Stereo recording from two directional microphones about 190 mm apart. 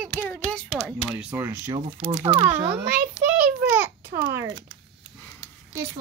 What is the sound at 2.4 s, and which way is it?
Speech, 20° right (ahead or behind).